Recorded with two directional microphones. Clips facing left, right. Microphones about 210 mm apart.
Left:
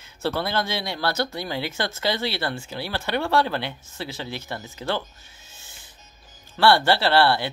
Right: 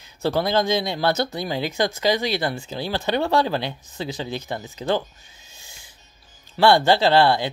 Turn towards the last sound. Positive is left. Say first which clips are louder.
# right 3 dB
turn(degrees=-15)  # may be behind; listen again after turning